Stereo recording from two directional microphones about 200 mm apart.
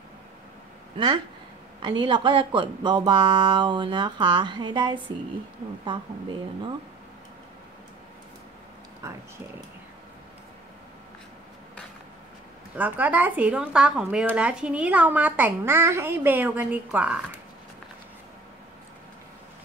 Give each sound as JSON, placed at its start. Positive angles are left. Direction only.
{"t": 0.9, "sound": "speech", "side_deg": -20}
{"t": 12.7, "sound": "speech", "side_deg": -10}